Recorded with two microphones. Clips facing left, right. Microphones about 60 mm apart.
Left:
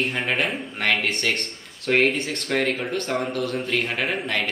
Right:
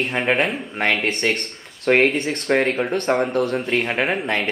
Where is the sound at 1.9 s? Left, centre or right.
Right.